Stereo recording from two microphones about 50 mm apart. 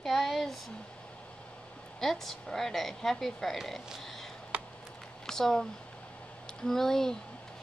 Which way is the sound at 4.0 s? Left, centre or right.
Centre.